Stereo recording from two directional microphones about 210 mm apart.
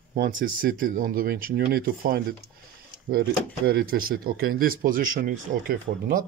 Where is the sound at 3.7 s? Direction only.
45° right (ahead or behind).